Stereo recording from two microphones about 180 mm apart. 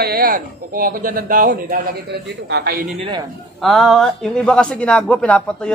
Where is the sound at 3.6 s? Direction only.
Centre (ahead or behind).